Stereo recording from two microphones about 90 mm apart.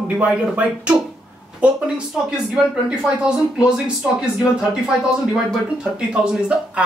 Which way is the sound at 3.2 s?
10° right (ahead or behind).